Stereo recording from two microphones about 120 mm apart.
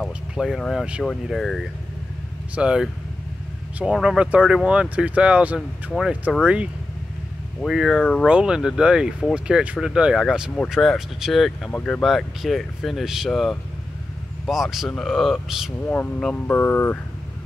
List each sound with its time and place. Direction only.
0.0 s vehicle: centre (ahead or behind)
1.2 s speech: centre (ahead or behind)
8.3 s speech: 10° right (ahead or behind)
15.9 s speech: 10° left (ahead or behind)